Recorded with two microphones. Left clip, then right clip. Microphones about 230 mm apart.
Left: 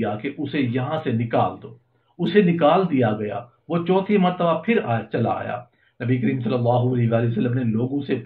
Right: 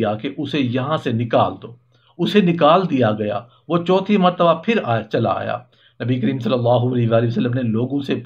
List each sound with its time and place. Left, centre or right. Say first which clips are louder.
0.0 s speech: right 4 dB; right